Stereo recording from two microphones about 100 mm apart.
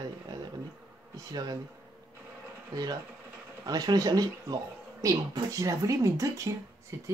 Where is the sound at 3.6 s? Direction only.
40° right (ahead or behind).